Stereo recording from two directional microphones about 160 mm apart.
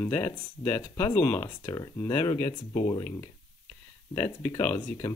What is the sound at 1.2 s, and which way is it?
Speech, 40° left (ahead or behind).